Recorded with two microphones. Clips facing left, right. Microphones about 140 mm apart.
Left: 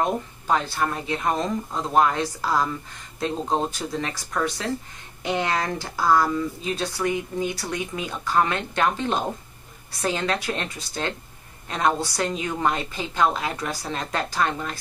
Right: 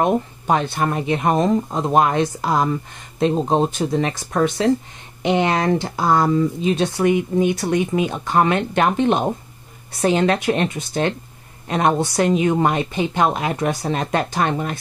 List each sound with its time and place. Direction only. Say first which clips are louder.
0.0 s speech: right 6 dB; 20° right (ahead or behind)